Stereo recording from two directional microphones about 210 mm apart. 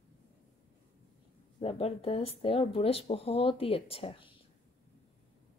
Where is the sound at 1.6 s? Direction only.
25° left (ahead or behind).